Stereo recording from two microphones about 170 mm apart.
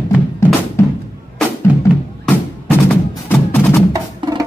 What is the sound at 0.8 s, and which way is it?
Music, 15° left (ahead or behind).